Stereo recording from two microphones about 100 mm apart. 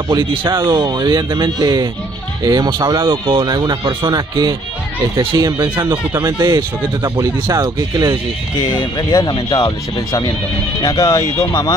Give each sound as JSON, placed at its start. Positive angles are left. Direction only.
{"t": 0.3, "sound": "speech", "side_deg": -50}
{"t": 3.1, "sound": "speech", "side_deg": -55}
{"t": 8.5, "sound": "speech", "side_deg": 45}
{"t": 10.8, "sound": "speech", "side_deg": 35}